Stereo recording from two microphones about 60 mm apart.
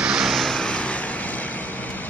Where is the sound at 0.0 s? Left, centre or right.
Centre.